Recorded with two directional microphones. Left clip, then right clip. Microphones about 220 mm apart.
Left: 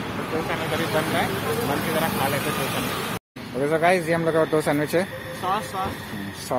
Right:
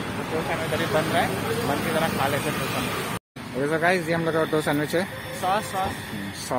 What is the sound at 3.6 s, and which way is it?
Speech, centre (ahead or behind).